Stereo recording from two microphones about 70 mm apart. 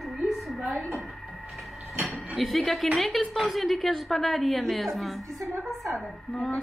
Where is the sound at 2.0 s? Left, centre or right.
Centre.